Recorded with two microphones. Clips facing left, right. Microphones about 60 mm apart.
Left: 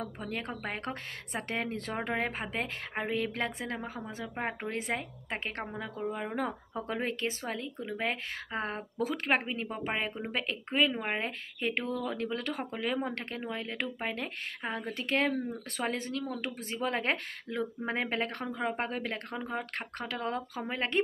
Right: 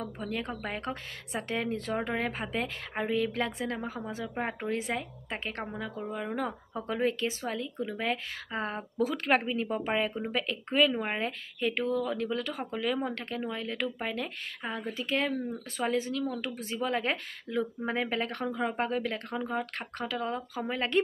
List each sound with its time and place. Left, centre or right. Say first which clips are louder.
0.2 s speech: right 3 dB; centre
0.7 s speech: right 1 dB; left
4.4 s speech: right 1 dB; centre
4.6 s speech: right 2 dB; left
10.7 s speech: right 3 dB; centre
11.1 s speech: right 2 dB; left
14.8 s speech: even; left
20.6 s speech: right 4 dB; left